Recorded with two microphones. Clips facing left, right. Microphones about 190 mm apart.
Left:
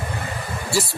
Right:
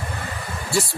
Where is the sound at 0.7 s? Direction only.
Centre (ahead or behind).